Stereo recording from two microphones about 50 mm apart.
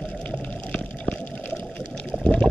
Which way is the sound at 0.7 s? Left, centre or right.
Left.